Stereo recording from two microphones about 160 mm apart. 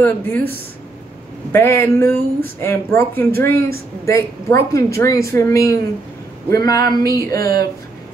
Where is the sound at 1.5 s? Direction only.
15° left (ahead or behind).